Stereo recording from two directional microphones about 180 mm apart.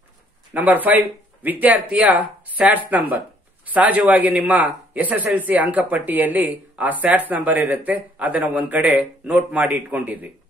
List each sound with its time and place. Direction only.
0.5 s speech: 10° right (ahead or behind)